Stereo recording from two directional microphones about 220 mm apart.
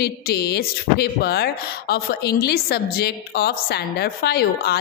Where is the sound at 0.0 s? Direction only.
45° left (ahead or behind).